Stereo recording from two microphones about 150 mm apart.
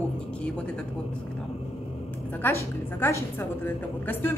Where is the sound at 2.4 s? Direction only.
15° left (ahead or behind).